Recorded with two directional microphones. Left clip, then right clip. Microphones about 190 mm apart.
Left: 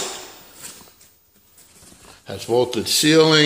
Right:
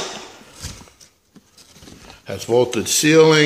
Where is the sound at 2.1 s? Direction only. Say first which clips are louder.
Right 2 dB; 5° right (ahead or behind).